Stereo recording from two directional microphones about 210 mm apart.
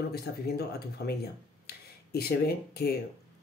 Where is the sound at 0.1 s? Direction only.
50° left (ahead or behind).